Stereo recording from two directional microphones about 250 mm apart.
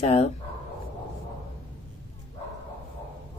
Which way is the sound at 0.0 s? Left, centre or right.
Left.